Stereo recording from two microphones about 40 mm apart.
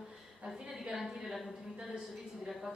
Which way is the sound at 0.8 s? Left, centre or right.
Centre.